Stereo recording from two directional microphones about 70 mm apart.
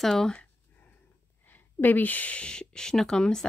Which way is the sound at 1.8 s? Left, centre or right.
Left.